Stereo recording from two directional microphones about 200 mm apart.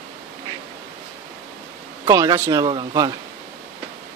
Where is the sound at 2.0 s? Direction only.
15° right (ahead or behind).